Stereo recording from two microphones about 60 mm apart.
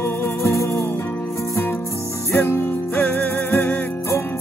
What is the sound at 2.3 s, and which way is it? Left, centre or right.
Music, left.